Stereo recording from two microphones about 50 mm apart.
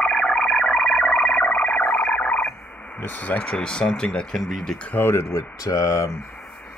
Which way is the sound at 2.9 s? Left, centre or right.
Left.